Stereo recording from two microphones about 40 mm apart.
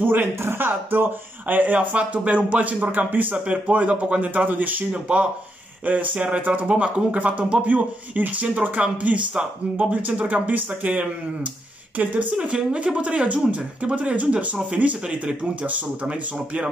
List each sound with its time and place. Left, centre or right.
0.0 s speech: right
0.4 s speech: right
1.5 s speech: right
5.0 s speech: right
5.9 s speech: right
7.6 s speech: right
10.0 s speech: right
12.4 s speech: right